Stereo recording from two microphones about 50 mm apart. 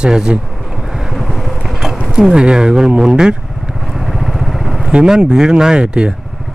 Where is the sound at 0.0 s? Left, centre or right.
Centre.